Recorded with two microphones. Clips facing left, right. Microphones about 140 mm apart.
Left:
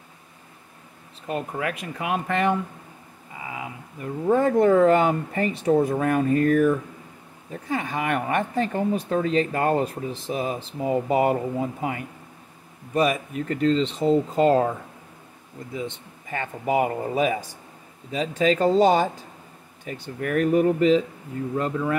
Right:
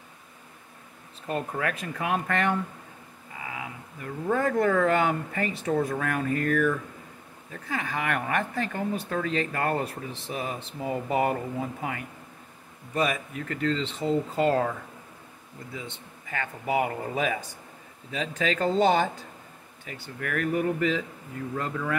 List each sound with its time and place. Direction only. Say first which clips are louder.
1.2 s speech: left 2 dB; 15° left (ahead or behind)
13.1 s speech: left 5 dB; 25° left (ahead or behind)
16.3 s speech: left 4 dB; 30° left (ahead or behind)
17.1 s speech: left 5 dB; 20° left (ahead or behind)
18.1 s speech: left 7 dB; 35° left (ahead or behind)